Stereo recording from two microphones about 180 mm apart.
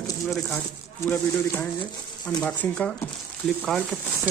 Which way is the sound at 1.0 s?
10° left (ahead or behind).